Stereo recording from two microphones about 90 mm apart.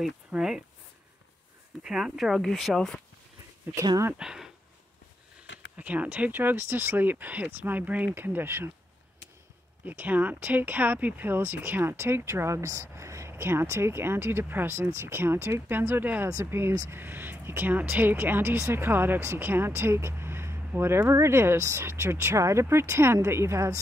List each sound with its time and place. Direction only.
0.3 s speech: 10° right (ahead or behind)
1.8 s speech: 10° right (ahead or behind)
4.2 s speech: 5° right (ahead or behind)
5.8 s speech: 15° right (ahead or behind)
9.8 s speech: 20° right (ahead or behind); by 17.0 s 35° right (ahead or behind)
17.0 s speech: 20° right (ahead or behind)